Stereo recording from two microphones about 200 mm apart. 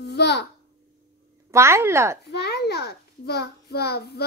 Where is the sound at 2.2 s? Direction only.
55° left (ahead or behind).